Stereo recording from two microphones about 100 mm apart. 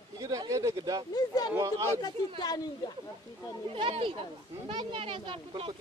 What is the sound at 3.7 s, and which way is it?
Speech, 65° right (ahead or behind).